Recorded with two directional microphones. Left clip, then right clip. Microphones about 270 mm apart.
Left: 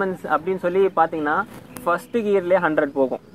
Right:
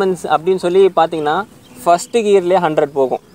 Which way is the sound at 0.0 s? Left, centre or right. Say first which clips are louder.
Right 7 dB; right.